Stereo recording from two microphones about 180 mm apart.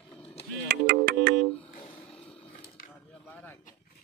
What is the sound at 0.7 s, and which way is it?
Music, 60° right (ahead or behind).